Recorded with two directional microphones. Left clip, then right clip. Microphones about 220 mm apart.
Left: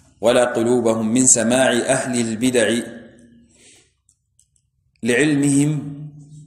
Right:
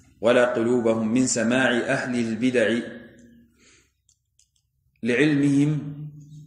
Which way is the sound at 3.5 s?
20° left (ahead or behind).